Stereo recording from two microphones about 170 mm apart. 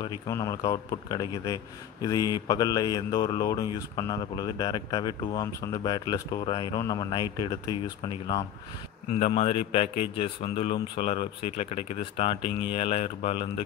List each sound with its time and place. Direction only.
0.3 s a man's voice: 15° left (ahead or behind); by 13.7 s 35° left (ahead or behind)